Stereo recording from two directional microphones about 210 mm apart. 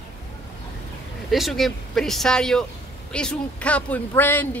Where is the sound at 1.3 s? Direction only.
Centre (ahead or behind).